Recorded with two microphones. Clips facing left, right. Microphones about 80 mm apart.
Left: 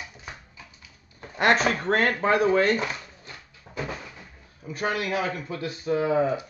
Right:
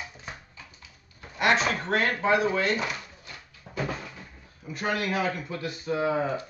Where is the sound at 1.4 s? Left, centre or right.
Left.